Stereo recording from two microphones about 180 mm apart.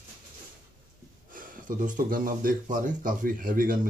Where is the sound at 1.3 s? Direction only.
50° right (ahead or behind).